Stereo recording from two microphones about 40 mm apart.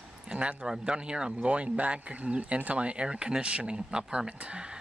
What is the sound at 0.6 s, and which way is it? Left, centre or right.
Speech, centre.